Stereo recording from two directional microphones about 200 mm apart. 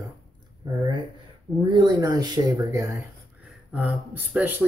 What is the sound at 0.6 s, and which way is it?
Speech, 20° right (ahead or behind).